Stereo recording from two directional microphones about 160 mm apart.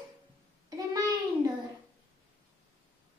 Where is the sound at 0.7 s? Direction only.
25° right (ahead or behind).